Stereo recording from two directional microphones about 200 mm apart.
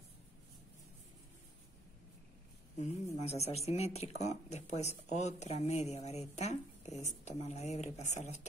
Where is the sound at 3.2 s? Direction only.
30° left (ahead or behind).